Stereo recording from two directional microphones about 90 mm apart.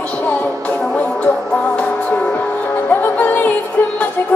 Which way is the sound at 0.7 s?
20° left (ahead or behind).